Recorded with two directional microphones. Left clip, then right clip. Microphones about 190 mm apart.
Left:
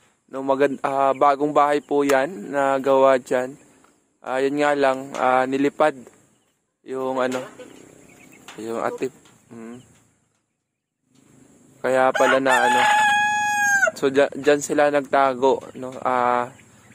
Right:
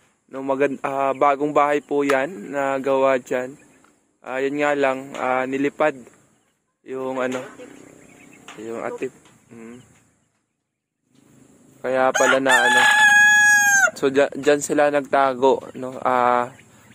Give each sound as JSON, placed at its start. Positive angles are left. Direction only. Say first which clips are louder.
{"t": 0.3, "sound": "a man's voice", "louder": "left 1 dB", "side_deg": 10}
{"t": 8.6, "sound": "a man's voice", "louder": "left 3 dB", "side_deg": 15}
{"t": 9.0, "sound": "a sound", "louder": "left 1 dB", "side_deg": 15}
{"t": 11.8, "sound": "chicken", "louder": "left 1 dB", "side_deg": 10}
{"t": 12.7, "sound": "crowing", "louder": "right 3 dB", "side_deg": -65}
{"t": 13.9, "sound": "speech", "louder": "even", "side_deg": 0}